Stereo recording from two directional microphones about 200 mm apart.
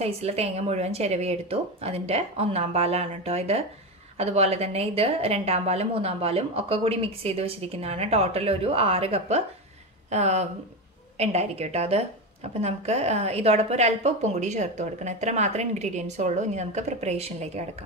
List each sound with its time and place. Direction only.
0.0 s a woman's voice: 30° right (ahead or behind)